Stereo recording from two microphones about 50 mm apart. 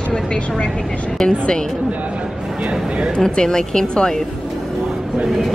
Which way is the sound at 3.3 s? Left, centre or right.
Centre.